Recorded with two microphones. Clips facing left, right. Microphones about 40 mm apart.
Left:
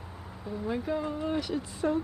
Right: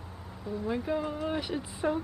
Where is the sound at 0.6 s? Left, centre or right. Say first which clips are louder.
Even; centre.